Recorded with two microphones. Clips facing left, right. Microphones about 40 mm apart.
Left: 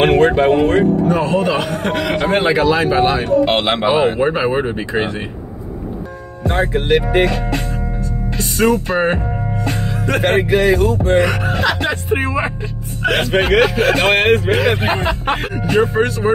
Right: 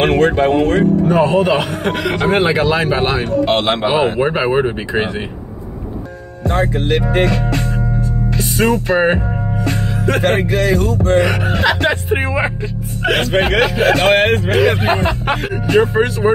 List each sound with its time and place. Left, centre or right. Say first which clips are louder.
0.0 s speech: left 1 dB; centre
1.0 s speech: right 3 dB; right
3.4 s speech: right 1 dB; centre
3.8 s speech: left 1 dB; centre
4.2 s speech: right 1 dB; centre
6.4 s speech: even; centre
8.6 s speech: right 1 dB; centre
9.7 s speech: right 2 dB; centre
10.2 s speech: left 4 dB; centre
11.2 s speech: right 1 dB; centre
13.4 s speech: left 2 dB; centre
14.0 s speech: even; centre
15.6 s speech: right 2 dB; centre